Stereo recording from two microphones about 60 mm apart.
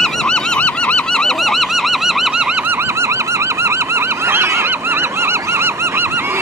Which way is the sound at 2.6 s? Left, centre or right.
Right.